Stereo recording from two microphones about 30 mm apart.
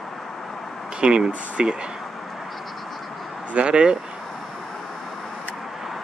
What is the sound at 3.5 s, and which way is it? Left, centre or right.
Speech, right.